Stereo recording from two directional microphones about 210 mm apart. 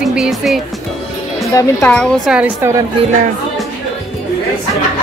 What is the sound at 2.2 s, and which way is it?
Speech, 5° right (ahead or behind).